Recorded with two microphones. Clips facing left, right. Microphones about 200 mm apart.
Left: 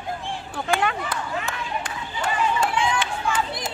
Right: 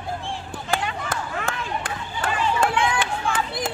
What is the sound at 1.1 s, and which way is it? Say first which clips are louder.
Run: right 1 dB; 55° right (ahead or behind).